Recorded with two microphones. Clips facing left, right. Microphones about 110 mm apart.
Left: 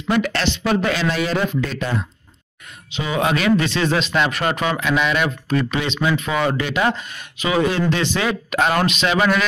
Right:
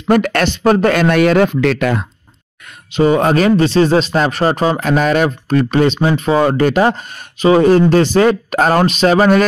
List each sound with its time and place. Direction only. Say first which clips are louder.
0.1 s speech: right 7 dB; 50° right (ahead or behind); by 2.0 s 70° right (ahead or behind)
2.9 s speech: right 9 dB; 45° right (ahead or behind)